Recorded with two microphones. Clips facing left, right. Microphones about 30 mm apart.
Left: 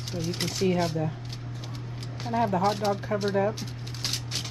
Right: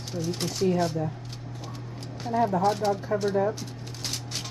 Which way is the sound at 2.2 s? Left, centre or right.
Left.